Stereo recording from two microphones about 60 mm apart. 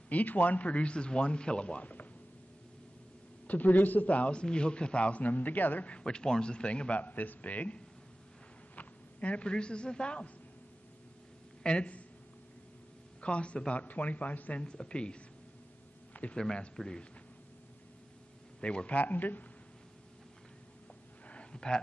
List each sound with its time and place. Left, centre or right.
0.1 s a man's voice: left
3.4 s a man's voice: left
11.6 s a man's voice: centre
13.2 s a man's voice: centre
14.6 s speech: centre
16.1 s a sound: left
16.3 s speech: centre
18.6 s a man's voice: centre
21.3 s a sound: centre